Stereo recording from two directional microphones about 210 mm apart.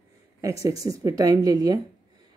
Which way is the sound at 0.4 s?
15° right (ahead or behind).